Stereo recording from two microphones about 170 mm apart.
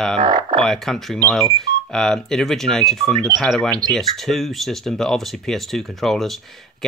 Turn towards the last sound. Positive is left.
turn(degrees=0)  # may be behind; listen again after turning